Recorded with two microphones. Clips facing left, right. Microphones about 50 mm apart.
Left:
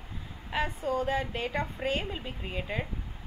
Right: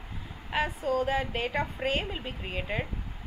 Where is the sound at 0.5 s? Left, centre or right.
Centre.